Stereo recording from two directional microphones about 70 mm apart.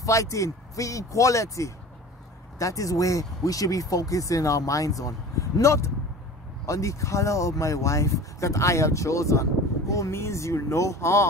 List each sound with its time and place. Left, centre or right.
0.0 s speech: left